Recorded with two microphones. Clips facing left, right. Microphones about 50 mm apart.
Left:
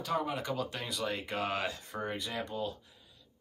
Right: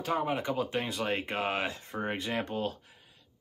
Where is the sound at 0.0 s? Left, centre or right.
Right.